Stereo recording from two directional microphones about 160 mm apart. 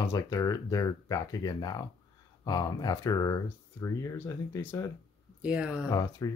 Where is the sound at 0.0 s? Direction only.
20° left (ahead or behind).